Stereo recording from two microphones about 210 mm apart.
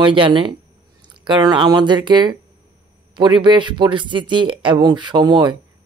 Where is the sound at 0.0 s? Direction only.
25° right (ahead or behind).